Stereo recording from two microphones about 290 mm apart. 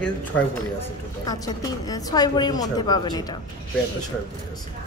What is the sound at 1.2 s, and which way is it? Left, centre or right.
A woman's voice, centre.